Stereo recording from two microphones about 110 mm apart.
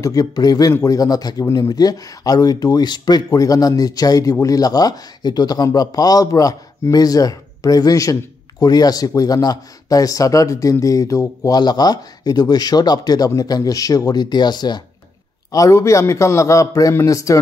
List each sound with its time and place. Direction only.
0.0 s speech: 35° left (ahead or behind)
15.5 s a man's voice: 30° left (ahead or behind)